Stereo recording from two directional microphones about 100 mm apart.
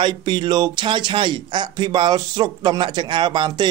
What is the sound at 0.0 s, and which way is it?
Speech, 55° right (ahead or behind).